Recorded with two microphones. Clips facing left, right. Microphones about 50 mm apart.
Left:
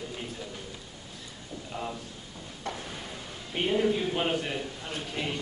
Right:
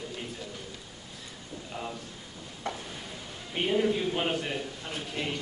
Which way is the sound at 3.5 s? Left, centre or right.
Centre.